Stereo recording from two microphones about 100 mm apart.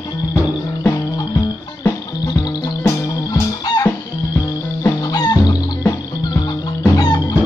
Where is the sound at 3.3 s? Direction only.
40° left (ahead or behind).